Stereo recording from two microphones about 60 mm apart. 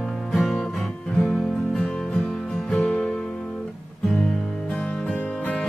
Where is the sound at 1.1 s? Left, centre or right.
Centre.